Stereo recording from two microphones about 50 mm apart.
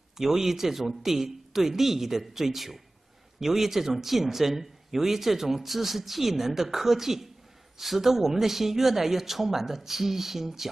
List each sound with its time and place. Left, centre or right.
0.2 s speech: centre